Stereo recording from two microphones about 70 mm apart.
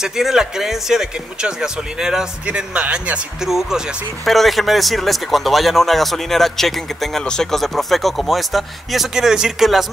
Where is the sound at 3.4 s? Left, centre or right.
Centre.